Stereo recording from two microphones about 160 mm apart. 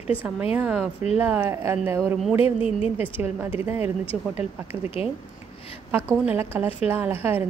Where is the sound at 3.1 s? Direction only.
10° right (ahead or behind).